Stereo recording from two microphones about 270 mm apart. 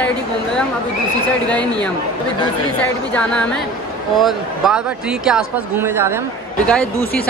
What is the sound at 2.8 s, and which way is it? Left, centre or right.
Speech, centre.